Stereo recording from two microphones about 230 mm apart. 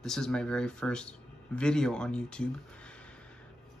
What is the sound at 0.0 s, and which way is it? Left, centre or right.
Speech, centre.